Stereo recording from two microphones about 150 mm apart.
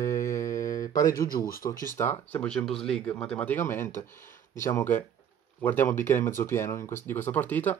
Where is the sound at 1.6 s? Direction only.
20° left (ahead or behind).